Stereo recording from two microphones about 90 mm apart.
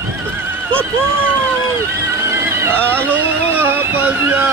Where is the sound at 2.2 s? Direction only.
25° right (ahead or behind).